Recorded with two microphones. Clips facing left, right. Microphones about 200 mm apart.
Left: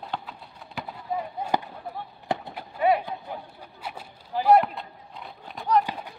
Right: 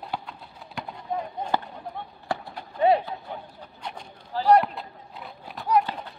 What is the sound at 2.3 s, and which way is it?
Clip-clop, 20° left (ahead or behind).